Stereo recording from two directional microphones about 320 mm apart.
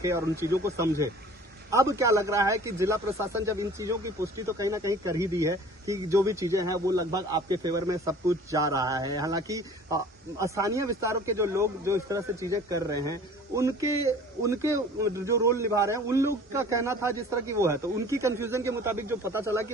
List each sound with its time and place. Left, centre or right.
0.0 s speech: centre